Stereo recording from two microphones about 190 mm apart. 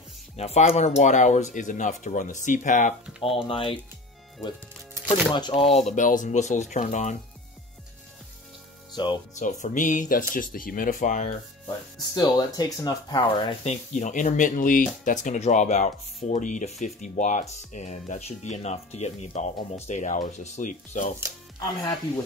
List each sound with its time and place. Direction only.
0.4 s speech: 35° left (ahead or behind)
3.2 s speech: 30° left (ahead or behind)
5.0 s speech: 25° left (ahead or behind)
5.9 s speech: 40° left (ahead or behind)
8.9 s speech: 25° left (ahead or behind)
9.4 s speech: 40° left (ahead or behind)
12.5 s speech: 20° left (ahead or behind)
13.7 s speech: 40° left (ahead or behind)
21.5 s speech: 15° left (ahead or behind)